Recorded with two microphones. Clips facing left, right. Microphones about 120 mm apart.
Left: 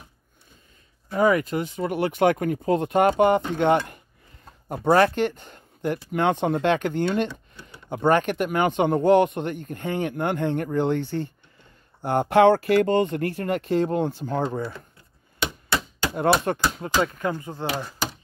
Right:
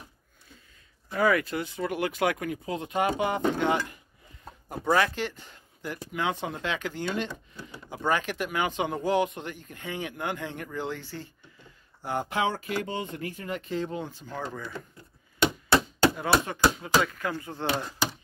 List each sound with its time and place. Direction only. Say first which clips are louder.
1.1 s speech: left 4 dB; 20° left (ahead or behind)
1.8 s speech: left 6 dB; 30° left (ahead or behind); by 14.4 s 55° left (ahead or behind)
14.4 s speech: left 8 dB; 30° left (ahead or behind)
16.2 s speech: left 5 dB; 55° left (ahead or behind)
17.0 s speech: left 5 dB; 30° left (ahead or behind)
17.3 s speech: left 4 dB; 15° left (ahead or behind)
17.6 s speech: left 1 dB; 5° left (ahead or behind)